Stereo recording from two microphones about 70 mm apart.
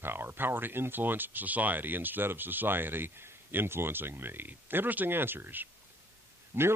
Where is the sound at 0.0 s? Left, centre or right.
Right.